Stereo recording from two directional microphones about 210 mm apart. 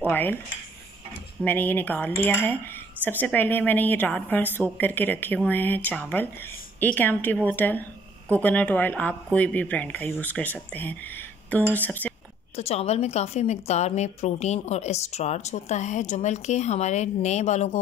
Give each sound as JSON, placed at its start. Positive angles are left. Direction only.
{"t": 0.1, "sound": "speech", "side_deg": 10}
{"t": 1.4, "sound": "speech", "side_deg": 10}
{"t": 12.5, "sound": "a woman's voice", "side_deg": 30}